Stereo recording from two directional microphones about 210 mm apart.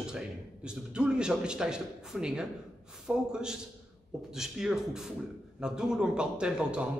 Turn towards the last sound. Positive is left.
turn(degrees=-5)  # may be behind; listen again after turning